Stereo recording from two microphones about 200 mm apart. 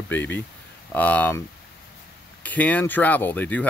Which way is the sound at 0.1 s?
10° left (ahead or behind).